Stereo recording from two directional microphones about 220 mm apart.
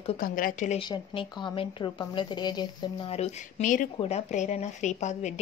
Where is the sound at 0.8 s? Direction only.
20° left (ahead or behind).